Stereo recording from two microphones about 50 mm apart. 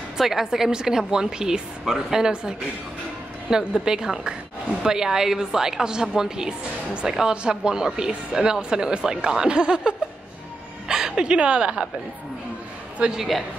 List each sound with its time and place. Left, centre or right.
0.2 s a woman's voice: centre
6.9 s a woman's voice: right
13.1 s a woman's voice: centre